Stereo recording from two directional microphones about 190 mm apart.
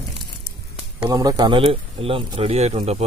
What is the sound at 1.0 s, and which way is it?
Speech, 20° right (ahead or behind).